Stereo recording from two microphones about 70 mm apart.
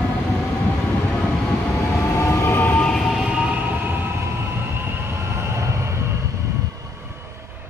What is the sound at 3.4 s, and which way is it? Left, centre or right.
Train, right.